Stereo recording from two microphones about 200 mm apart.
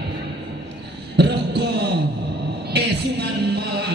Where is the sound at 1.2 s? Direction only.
55° right (ahead or behind).